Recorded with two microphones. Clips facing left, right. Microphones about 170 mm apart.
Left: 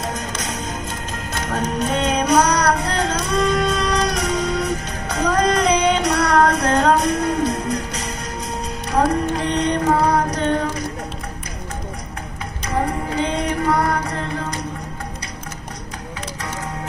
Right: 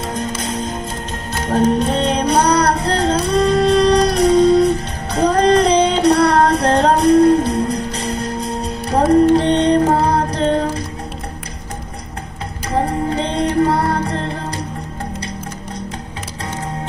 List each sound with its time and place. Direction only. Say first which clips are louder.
0.1 s music: right 5 dB; 30° right (ahead or behind)
12.7 s music: right 4 dB; 30° right (ahead or behind)